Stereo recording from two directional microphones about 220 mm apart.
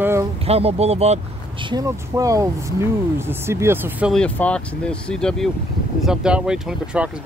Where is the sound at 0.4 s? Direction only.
25° right (ahead or behind); by 4.1 s 10° right (ahead or behind).